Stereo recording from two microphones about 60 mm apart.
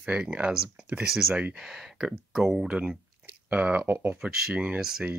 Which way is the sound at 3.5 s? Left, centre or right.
Right.